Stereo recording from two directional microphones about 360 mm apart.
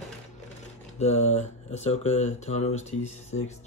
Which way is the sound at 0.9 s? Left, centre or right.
Centre.